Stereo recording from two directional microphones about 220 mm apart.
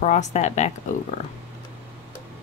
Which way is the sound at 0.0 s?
30° left (ahead or behind).